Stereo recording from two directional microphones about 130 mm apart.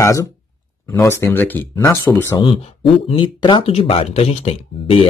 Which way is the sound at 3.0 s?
40° left (ahead or behind).